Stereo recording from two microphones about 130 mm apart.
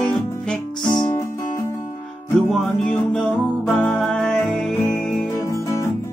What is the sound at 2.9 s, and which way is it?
Music, 5° left (ahead or behind).